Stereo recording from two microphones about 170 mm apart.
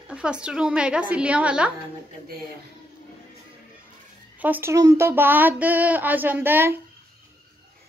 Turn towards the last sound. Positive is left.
turn(degrees=-10)  # may be behind; listen again after turning